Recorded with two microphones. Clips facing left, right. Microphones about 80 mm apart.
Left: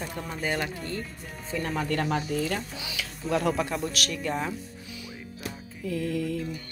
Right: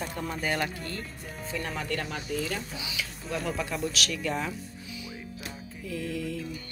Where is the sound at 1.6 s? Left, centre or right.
Left.